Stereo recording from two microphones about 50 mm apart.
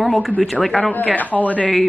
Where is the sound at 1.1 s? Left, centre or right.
Left.